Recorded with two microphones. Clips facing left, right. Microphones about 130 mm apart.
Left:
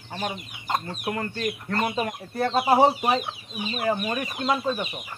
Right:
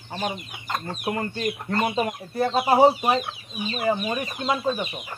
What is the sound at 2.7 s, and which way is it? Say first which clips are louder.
Speech: right 3 dB; 5° right (ahead or behind).